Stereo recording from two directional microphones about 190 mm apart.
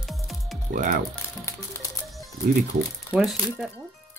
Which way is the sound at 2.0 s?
Centre (ahead or behind).